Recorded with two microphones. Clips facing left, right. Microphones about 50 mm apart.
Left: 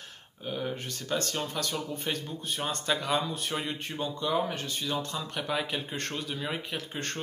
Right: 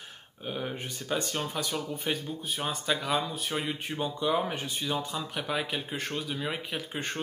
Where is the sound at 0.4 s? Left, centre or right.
Centre.